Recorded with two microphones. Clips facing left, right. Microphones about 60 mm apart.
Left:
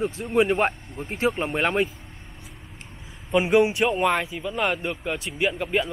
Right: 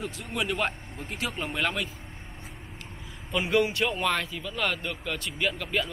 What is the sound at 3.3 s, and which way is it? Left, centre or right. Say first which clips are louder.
A man's voice: left 6 dB; left.